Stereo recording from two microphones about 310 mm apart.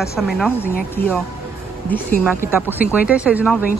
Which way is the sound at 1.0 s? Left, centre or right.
Left.